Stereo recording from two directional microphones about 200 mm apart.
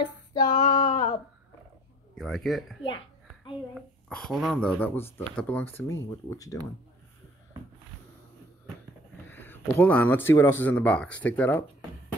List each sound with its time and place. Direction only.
0.4 s female singing: 45° left (ahead or behind)
2.1 s speech: centre (ahead or behind)
4.1 s speech: centre (ahead or behind); by 6.6 s 15° left (ahead or behind)
9.3 s speech: 10° left (ahead or behind)